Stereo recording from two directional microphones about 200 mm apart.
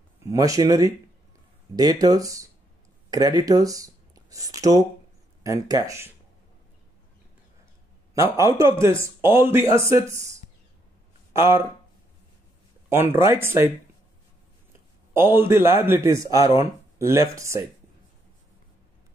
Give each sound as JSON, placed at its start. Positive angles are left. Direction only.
{"t": 0.3, "sound": "speech", "side_deg": -15}
{"t": 8.1, "sound": "speech", "side_deg": -15}
{"t": 12.9, "sound": "speech", "side_deg": -10}
{"t": 15.1, "sound": "speech", "side_deg": -10}